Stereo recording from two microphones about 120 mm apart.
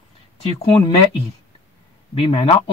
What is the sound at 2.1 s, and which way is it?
Speech, 55° left (ahead or behind).